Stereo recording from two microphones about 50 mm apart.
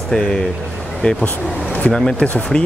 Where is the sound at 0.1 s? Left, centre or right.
Centre.